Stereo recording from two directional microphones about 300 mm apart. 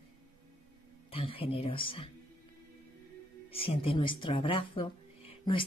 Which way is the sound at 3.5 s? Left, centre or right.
Centre.